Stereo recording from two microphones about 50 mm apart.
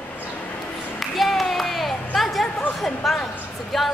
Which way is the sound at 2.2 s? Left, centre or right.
Centre.